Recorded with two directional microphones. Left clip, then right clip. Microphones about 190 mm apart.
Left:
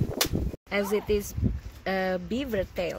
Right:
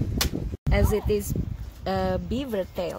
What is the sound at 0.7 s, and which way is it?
Speech, centre (ahead or behind).